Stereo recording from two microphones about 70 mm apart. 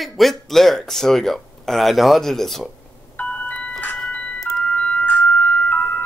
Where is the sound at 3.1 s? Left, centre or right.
Centre.